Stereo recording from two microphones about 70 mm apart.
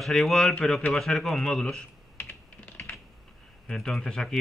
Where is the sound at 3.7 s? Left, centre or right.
Centre.